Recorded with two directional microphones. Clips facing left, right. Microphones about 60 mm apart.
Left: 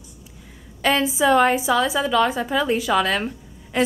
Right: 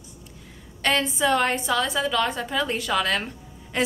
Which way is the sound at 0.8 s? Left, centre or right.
Centre.